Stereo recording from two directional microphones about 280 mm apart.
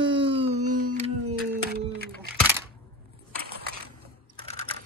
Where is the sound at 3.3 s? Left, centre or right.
Right.